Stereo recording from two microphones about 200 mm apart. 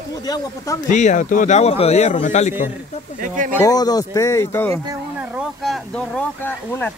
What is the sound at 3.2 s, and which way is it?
Speech, 40° right (ahead or behind).